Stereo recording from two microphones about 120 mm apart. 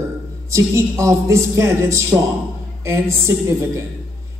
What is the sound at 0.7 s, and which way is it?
Speech, 25° right (ahead or behind).